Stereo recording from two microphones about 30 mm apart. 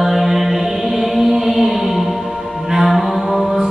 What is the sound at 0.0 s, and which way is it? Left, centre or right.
Mantra, centre.